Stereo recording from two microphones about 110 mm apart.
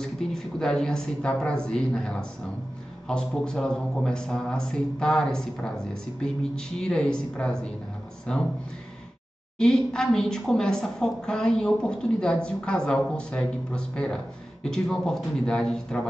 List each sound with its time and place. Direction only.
0.0 s a woman's voice: 5° left (ahead or behind)
9.6 s a woman's voice: 5° left (ahead or behind)